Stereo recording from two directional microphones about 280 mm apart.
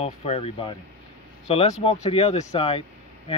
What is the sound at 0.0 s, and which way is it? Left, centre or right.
Speech, left.